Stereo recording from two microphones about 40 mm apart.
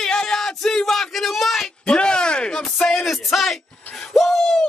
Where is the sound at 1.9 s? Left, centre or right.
Left.